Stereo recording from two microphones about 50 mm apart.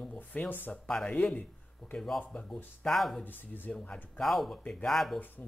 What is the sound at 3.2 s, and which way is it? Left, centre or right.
Speech, left.